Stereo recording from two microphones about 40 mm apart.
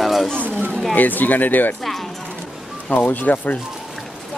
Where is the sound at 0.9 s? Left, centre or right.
Left.